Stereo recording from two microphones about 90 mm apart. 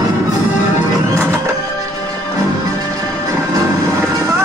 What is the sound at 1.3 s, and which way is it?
Music, 40° right (ahead or behind).